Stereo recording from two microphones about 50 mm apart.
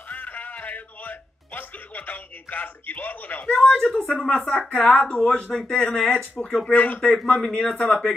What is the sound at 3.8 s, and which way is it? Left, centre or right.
Speech, centre.